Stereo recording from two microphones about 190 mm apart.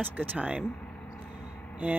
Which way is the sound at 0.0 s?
10° right (ahead or behind).